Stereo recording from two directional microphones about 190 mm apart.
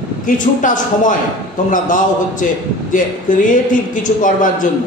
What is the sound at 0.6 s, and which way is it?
Speech, 45° left (ahead or behind).